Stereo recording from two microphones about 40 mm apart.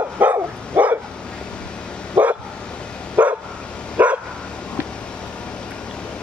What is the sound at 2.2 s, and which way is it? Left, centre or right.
Bow-wow, right.